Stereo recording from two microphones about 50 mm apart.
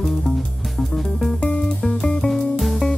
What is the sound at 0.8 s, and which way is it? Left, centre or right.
Music, centre.